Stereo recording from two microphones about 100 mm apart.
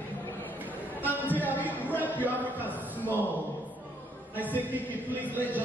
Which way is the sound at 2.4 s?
15° right (ahead or behind).